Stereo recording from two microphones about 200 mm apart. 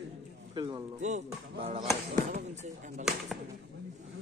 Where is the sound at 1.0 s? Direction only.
35° right (ahead or behind).